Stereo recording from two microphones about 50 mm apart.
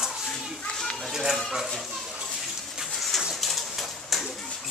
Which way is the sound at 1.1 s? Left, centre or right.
Centre.